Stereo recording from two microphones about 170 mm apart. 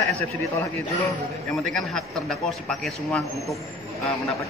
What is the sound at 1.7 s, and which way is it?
Speech, 5° left (ahead or behind).